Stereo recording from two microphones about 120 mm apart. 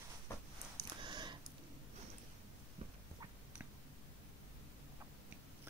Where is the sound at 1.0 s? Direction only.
40° right (ahead or behind).